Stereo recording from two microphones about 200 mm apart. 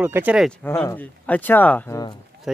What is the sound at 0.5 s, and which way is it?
Speech, 5° left (ahead or behind).